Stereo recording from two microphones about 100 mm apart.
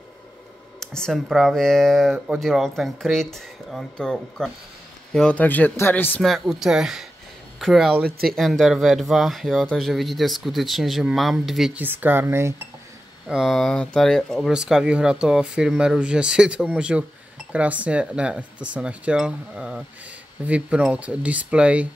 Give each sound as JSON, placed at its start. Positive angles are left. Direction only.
{"t": 0.7, "sound": "speech", "side_deg": 5}
{"t": 5.4, "sound": "speech", "side_deg": 15}
{"t": 6.2, "sound": "speech", "side_deg": 0}
{"t": 11.7, "sound": "speech", "side_deg": -20}
{"t": 13.3, "sound": "speech", "side_deg": -5}